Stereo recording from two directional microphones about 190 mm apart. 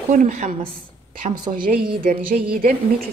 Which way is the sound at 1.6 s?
50° right (ahead or behind).